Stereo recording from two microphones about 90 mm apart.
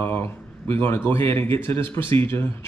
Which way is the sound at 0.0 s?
25° left (ahead or behind).